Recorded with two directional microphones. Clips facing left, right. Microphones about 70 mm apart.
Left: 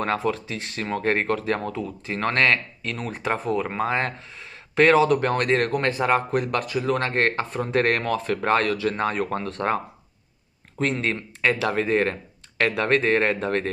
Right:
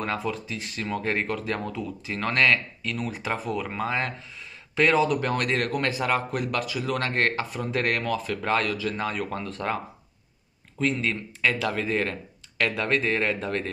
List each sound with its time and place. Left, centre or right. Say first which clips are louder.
0.0 s speech: left 5 dB; left
5.2 s speech: left 4 dB; left
10.8 s speech: left 2 dB; left
11.7 s speech: left 5 dB; left